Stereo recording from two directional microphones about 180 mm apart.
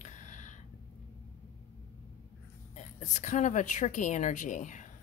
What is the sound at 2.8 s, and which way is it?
A woman's voice, 40° left (ahead or behind).